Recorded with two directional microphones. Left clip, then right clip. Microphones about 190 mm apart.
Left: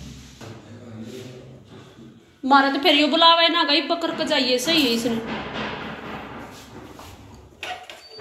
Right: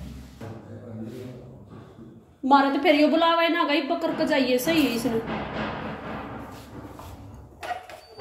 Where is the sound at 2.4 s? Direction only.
10° right (ahead or behind).